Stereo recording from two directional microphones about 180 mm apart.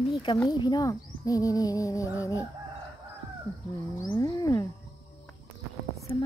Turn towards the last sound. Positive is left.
turn(degrees=30)  # may be behind; listen again after turning